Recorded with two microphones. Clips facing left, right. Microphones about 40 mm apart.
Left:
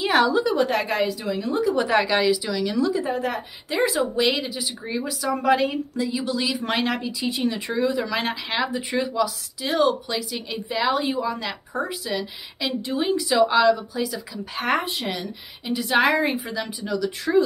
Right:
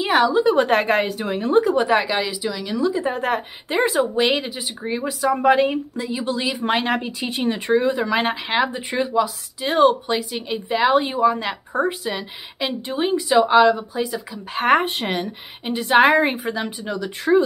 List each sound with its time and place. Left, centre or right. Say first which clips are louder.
0.0 s speech: right 2 dB; centre
0.4 s a woman's voice: right 4 dB; right
1.8 s a woman's voice: right 1 dB; centre
3.0 s speech: right 3 dB; right
6.9 s speech: right 3 dB; right